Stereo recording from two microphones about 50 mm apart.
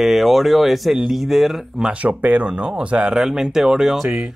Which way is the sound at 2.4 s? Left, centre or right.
Centre.